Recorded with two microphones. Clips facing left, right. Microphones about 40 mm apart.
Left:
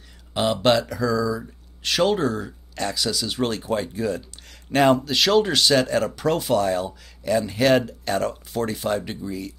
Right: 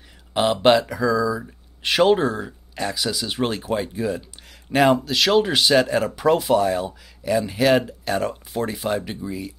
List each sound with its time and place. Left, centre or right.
0.3 s speech: centre
5.5 s speech: centre